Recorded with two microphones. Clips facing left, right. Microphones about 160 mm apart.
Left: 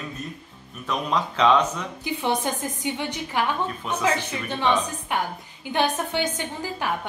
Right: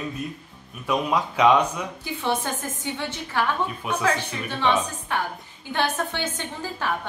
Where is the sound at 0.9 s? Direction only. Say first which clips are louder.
Right 2 dB; 10° right (ahead or behind).